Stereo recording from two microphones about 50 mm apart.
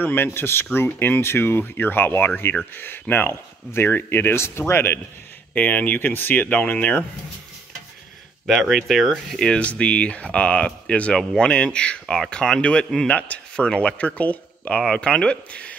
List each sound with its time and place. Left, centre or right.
0.0 s speech: left
5.5 s speech: left
6.6 s speech: left
8.5 s speech: centre
9.5 s speech: left
14.9 s speech: centre